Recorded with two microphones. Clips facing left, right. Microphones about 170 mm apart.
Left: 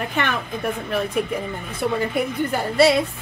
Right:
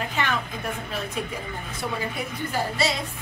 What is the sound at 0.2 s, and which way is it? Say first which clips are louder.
Speech: left 4 dB; 60° left (ahead or behind).